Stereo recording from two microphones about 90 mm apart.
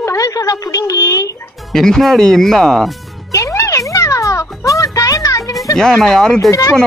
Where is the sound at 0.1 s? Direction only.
40° left (ahead or behind).